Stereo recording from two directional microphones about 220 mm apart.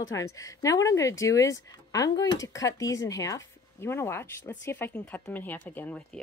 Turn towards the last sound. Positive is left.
turn(degrees=5)  # may be behind; listen again after turning